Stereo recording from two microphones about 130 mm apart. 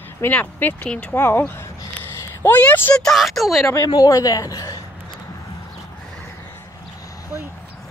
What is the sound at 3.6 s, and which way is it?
A woman's voice, 25° left (ahead or behind).